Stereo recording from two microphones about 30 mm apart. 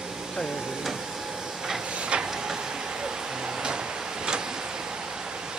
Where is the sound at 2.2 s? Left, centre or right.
Centre.